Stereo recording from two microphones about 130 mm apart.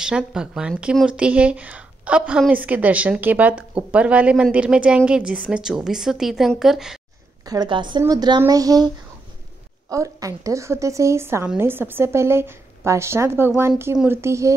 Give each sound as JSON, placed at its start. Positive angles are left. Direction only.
{"t": 0.0, "sound": "a woman's voice", "side_deg": -5}
{"t": 7.4, "sound": "a woman's voice", "side_deg": -35}